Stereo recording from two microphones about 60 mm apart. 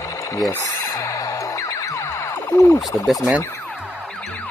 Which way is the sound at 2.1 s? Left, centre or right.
Left.